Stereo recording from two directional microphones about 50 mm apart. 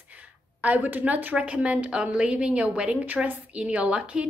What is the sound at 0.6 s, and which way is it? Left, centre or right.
A woman's voice, right.